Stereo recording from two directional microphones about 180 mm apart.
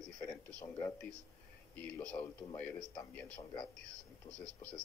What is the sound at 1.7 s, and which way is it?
A man's voice, 10° left (ahead or behind).